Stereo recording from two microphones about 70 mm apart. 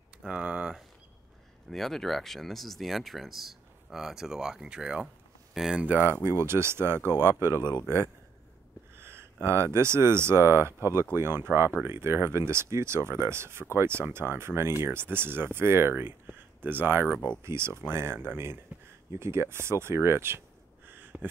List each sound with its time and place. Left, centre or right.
0.2 s speech: centre
1.7 s speech: centre
5.0 s a sound: centre
5.9 s speech: right
8.9 s speech: right